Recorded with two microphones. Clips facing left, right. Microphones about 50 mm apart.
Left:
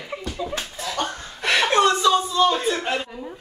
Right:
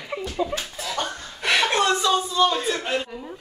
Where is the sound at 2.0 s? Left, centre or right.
Centre.